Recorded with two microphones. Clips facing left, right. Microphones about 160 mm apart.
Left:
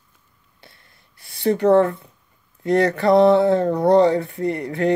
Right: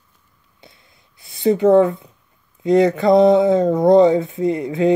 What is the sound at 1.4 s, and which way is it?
Speech, 15° right (ahead or behind).